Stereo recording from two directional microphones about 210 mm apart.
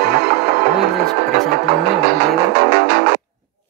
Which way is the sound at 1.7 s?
50° right (ahead or behind).